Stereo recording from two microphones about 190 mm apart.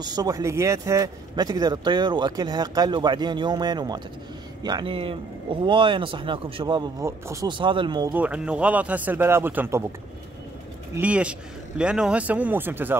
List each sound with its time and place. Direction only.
0.0 s speech: 20° right (ahead or behind)
8.1 s a man's voice: 10° right (ahead or behind)
11.0 s a man's voice: 5° right (ahead or behind)